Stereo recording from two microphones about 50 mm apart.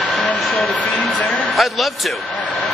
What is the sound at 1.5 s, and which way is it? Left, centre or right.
Speech, centre.